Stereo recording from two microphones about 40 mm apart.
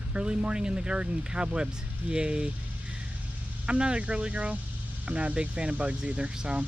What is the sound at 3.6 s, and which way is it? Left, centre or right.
Speech, right.